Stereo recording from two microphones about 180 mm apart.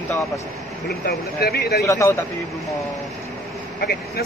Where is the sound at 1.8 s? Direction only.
15° left (ahead or behind).